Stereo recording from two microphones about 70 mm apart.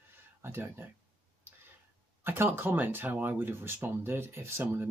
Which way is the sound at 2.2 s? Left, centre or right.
Right.